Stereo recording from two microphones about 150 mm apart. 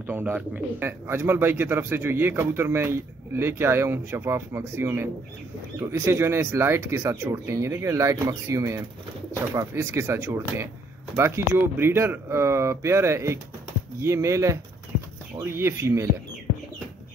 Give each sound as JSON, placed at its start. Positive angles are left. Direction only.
{"t": 0.0, "sound": "speech", "side_deg": -10}